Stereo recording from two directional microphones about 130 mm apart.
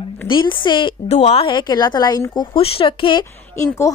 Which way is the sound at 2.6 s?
45° left (ahead or behind).